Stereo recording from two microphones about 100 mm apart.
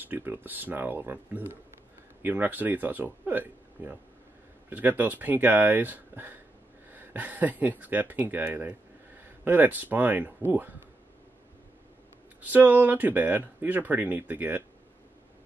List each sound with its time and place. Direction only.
0.0 s speech: 20° right (ahead or behind)
12.4 s speech: 15° right (ahead or behind)